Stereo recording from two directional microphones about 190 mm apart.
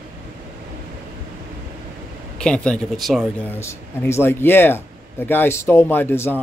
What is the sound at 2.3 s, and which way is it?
Speech, 5° left (ahead or behind).